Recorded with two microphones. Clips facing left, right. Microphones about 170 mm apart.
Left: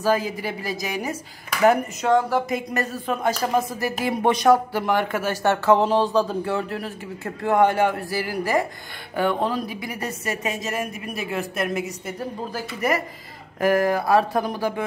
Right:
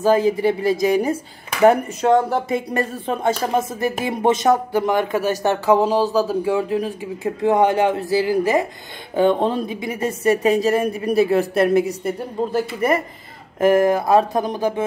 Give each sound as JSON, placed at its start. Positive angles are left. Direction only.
{"t": 0.0, "sound": "a woman's voice", "side_deg": -25}